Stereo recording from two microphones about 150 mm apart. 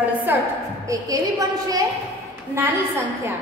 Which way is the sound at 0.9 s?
25° right (ahead or behind).